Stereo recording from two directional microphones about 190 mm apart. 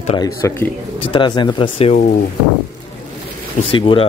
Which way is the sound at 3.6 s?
25° left (ahead or behind).